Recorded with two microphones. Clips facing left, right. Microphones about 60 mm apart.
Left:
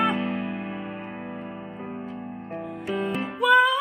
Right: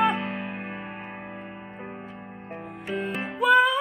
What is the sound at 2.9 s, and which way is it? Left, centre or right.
Music, centre.